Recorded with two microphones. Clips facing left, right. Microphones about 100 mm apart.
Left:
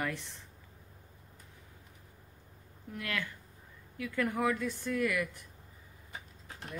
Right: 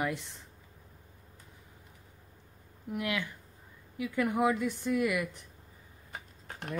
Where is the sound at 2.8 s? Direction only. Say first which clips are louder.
Right 4 dB; 15° right (ahead or behind).